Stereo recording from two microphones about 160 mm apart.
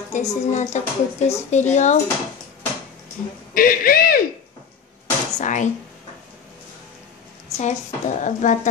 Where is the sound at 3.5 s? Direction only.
65° left (ahead or behind).